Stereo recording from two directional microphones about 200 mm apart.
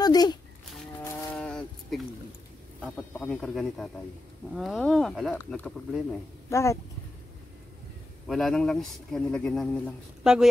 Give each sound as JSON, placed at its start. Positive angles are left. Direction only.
{"t": 0.0, "sound": "speech", "side_deg": 20}
{"t": 1.0, "sound": "a sound", "side_deg": 5}
{"t": 2.8, "sound": "speech", "side_deg": 5}
{"t": 6.5, "sound": "speech", "side_deg": 15}
{"t": 8.3, "sound": "speech", "side_deg": 0}